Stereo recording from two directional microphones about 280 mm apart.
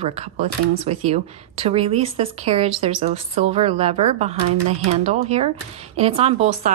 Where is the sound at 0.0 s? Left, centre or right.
Right.